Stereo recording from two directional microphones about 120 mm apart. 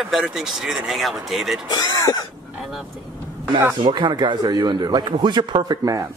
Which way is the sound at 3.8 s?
40° right (ahead or behind).